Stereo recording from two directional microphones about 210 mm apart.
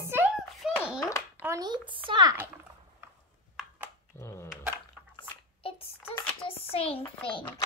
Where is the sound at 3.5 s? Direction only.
5° right (ahead or behind).